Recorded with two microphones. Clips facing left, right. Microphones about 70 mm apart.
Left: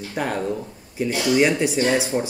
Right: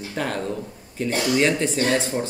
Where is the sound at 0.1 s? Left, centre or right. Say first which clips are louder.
Left 2 dB; centre.